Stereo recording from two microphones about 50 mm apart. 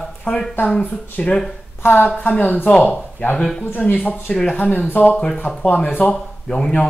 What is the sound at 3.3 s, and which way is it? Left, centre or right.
Speech, centre.